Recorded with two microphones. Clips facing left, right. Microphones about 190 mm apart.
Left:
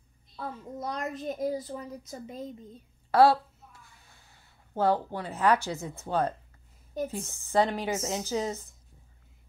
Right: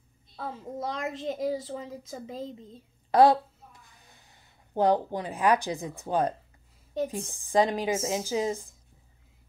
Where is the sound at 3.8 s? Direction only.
20° right (ahead or behind).